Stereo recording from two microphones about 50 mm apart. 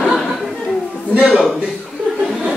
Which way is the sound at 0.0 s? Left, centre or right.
Centre.